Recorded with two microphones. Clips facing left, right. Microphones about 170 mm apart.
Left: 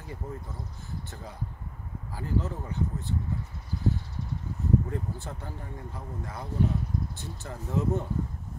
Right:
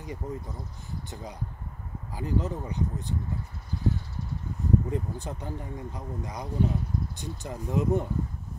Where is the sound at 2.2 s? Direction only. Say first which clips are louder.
Right 2 dB; 15° right (ahead or behind).